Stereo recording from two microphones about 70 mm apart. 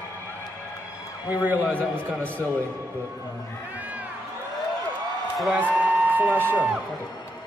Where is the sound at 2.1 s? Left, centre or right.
Centre.